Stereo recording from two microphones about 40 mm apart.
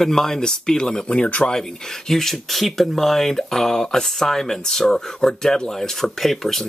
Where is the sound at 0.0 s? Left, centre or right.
Centre.